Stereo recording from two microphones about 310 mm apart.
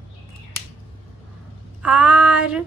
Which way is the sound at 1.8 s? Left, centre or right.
Centre.